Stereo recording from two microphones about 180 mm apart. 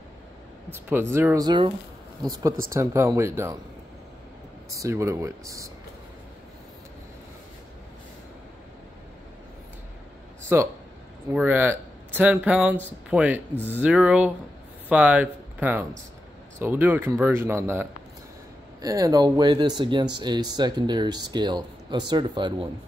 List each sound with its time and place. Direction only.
0.8 s speech: 15° right (ahead or behind)
2.7 s speech: 15° right (ahead or behind)
4.7 s speech: 15° right (ahead or behind)
10.5 s speech: 10° right (ahead or behind)